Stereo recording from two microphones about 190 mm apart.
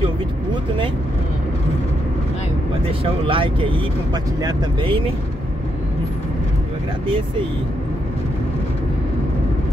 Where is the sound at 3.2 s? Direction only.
25° right (ahead or behind).